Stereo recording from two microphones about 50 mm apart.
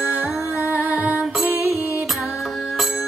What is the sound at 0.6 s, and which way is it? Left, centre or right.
Music, right.